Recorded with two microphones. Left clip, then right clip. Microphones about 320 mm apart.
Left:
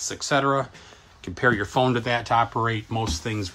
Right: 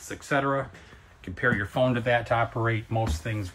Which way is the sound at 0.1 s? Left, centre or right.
Centre.